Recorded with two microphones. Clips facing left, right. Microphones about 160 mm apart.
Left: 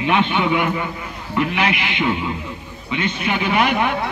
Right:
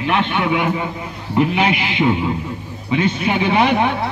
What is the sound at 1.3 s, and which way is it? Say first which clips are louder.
A man's voice: right 4 dB; 30° right (ahead or behind).